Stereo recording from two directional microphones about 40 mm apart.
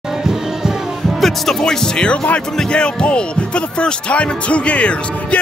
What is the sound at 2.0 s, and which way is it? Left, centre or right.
Speech, left.